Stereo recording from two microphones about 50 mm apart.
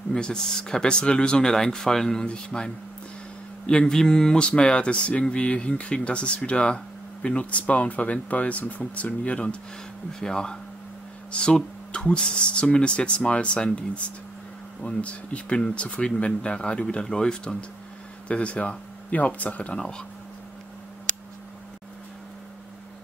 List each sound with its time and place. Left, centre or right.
0.1 s speech: centre